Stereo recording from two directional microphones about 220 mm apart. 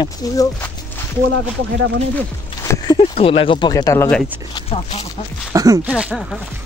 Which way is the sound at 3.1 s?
25° left (ahead or behind).